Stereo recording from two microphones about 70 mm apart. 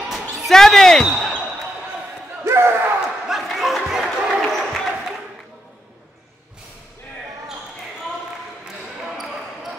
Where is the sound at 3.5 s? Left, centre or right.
Centre.